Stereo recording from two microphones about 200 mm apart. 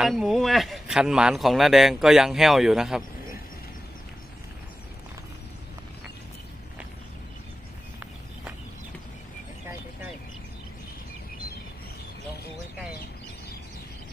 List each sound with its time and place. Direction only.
0.0 s a man's voice: centre (ahead or behind)